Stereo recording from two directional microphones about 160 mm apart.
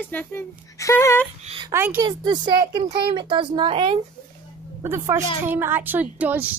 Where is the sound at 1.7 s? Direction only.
15° right (ahead or behind).